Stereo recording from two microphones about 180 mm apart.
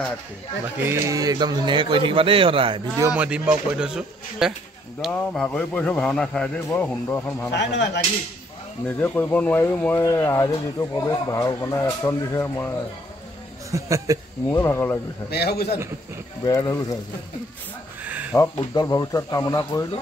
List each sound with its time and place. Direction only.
0.8 s a man's voice: 20° right (ahead or behind)
3.1 s a man's voice: 5° right (ahead or behind); by 7.4 s 10° left (ahead or behind)
7.5 s speech: 70° left (ahead or behind)
8.8 s speech: 10° left (ahead or behind)
13.7 s speech: 15° right (ahead or behind)
14.5 s speech: 15° left (ahead or behind)
15.2 s a man's voice: 65° left (ahead or behind)
16.4 s speech: 20° left (ahead or behind)
18.0 s a sound: 10° right (ahead or behind)
18.7 s speech: 20° left (ahead or behind)